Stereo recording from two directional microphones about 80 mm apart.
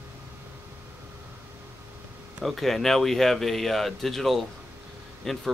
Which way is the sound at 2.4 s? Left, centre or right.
Centre.